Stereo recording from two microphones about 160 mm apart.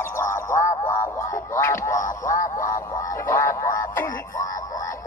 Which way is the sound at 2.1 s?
55° left (ahead or behind).